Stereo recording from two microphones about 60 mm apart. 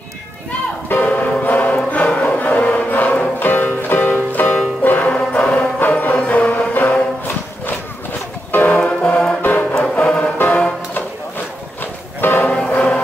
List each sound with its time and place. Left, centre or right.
0.8 s music: left
5.8 s music: left
9.4 s music: left
9.9 s music: centre
10.3 s music: left
12.2 s music: left
12.4 s music: centre